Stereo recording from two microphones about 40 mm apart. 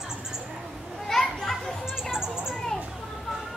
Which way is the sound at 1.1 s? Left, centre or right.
Centre.